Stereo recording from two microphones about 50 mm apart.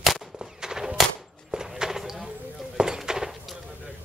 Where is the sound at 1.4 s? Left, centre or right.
Centre.